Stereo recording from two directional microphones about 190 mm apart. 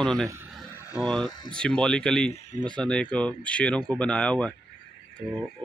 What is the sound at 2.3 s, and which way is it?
Speech, 35° left (ahead or behind).